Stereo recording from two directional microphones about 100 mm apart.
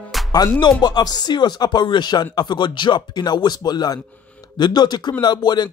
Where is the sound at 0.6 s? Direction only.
45° left (ahead or behind).